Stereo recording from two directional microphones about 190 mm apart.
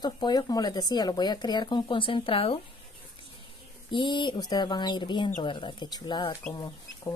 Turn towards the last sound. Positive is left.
turn(degrees=20)  # may be behind; listen again after turning